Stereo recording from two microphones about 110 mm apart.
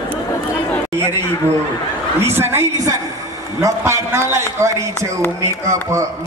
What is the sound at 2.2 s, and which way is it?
A man's voice, 20° right (ahead or behind).